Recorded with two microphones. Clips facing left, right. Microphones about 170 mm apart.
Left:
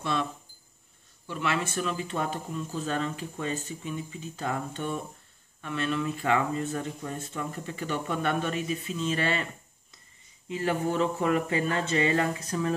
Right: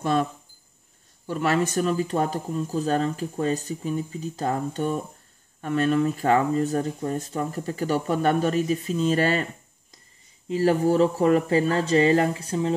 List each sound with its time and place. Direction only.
0.0 s speech: 45° right (ahead or behind)